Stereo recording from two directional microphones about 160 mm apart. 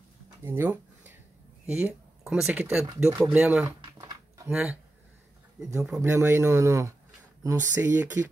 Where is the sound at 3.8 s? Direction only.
25° right (ahead or behind).